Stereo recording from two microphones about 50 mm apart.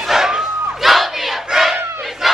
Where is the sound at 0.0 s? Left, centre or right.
Centre.